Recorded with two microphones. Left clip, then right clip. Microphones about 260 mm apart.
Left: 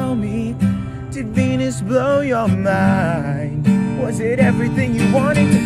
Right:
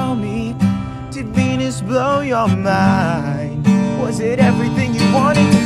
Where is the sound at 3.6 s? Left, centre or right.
Centre.